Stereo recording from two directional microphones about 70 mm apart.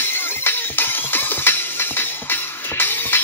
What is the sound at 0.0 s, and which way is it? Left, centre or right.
Music, left.